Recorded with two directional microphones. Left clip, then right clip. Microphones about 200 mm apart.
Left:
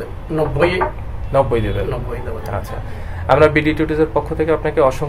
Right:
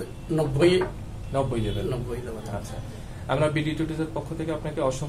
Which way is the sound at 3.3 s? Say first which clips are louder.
Left 13 dB; 50° left (ahead or behind).